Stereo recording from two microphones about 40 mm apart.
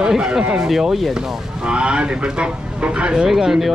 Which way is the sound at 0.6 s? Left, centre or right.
Centre.